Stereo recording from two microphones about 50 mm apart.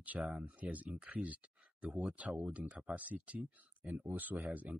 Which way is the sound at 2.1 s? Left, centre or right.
Right.